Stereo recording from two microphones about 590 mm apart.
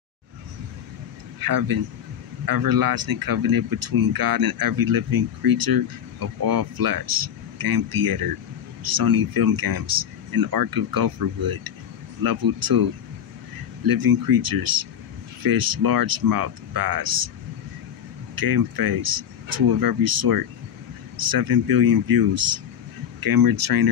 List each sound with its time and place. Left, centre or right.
1.4 s speech: right
13.8 s speech: right
18.4 s speech: right